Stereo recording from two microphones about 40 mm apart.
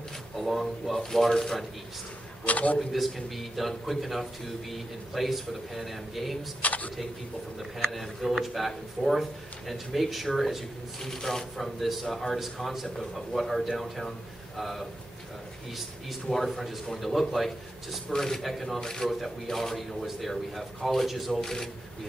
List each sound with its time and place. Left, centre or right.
0.4 s speech: centre
2.4 s a man's voice: left
2.9 s a man's voice: centre
6.6 s speech: left
7.8 s a man's voice: centre
11.0 s speech: centre
11.5 s a man's voice: centre
16.1 s a man's voice: centre
18.1 s speech: centre
18.4 s a man's voice: centre
18.8 s speech: centre
19.0 s a man's voice: centre
21.4 s speech: centre